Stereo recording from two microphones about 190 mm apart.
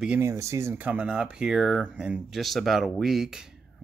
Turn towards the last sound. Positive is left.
turn(degrees=-5)  # may be behind; listen again after turning